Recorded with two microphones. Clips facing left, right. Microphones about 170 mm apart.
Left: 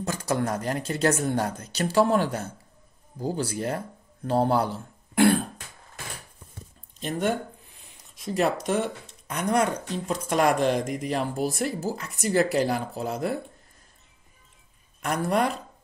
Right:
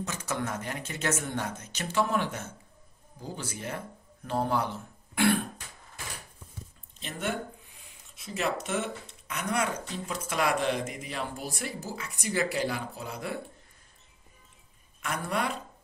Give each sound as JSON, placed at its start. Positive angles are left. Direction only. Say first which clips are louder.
{"t": 0.0, "sound": "speech", "louder": "left 6 dB", "side_deg": 35}
{"t": 7.0, "sound": "speech", "louder": "left 7 dB", "side_deg": 40}
{"t": 15.0, "sound": "speech", "louder": "left 7 dB", "side_deg": 40}